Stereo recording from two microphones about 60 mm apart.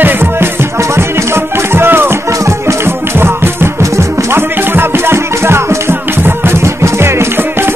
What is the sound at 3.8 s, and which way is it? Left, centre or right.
Music, right.